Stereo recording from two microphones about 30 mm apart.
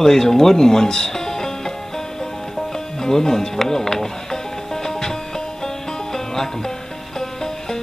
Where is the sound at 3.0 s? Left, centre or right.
Centre.